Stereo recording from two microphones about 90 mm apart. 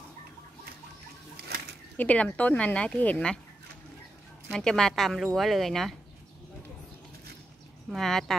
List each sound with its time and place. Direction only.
2.0 s a woman's voice: 15° left (ahead or behind)
4.5 s speech: 5° left (ahead or behind)
7.9 s speech: centre (ahead or behind)